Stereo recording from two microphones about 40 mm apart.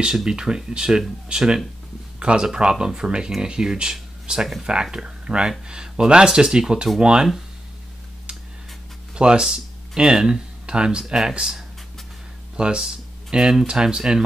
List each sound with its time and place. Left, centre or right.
0.0 s speech: centre
9.1 s speech: right